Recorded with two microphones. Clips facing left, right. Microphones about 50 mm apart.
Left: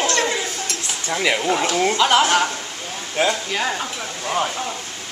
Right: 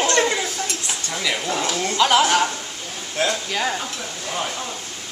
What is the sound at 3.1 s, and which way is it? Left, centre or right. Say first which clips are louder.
Speech: left 2 dB; centre.